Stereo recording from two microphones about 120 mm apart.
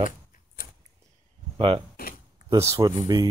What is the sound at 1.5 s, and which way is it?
Speech, 50° right (ahead or behind).